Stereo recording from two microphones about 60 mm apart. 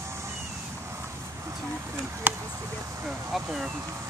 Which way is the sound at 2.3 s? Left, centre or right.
Right.